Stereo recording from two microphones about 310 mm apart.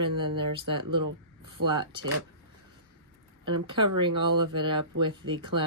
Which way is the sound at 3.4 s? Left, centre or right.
Centre.